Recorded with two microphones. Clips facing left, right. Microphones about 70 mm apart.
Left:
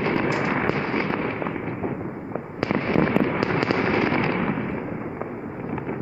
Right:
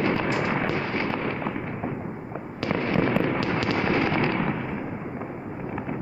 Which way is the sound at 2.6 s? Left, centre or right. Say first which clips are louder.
Left 3 dB; centre.